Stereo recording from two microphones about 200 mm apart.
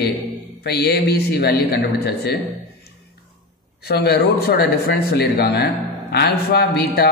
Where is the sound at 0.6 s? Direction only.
55° left (ahead or behind).